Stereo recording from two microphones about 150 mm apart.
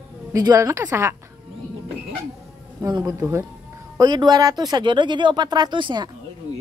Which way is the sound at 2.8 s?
25° right (ahead or behind).